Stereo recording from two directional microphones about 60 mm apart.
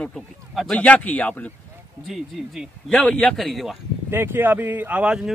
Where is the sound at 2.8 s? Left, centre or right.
Centre.